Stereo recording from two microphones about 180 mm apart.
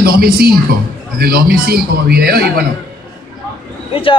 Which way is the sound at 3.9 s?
30° left (ahead or behind).